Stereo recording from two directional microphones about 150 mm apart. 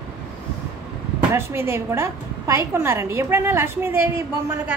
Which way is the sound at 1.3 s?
15° right (ahead or behind).